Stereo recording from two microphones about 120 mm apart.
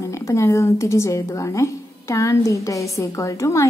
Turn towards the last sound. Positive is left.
turn(degrees=25)  # may be behind; listen again after turning